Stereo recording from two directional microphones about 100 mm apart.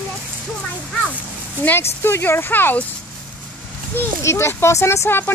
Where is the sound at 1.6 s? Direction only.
20° left (ahead or behind).